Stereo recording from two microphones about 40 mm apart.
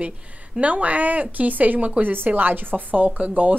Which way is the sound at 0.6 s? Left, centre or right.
Right.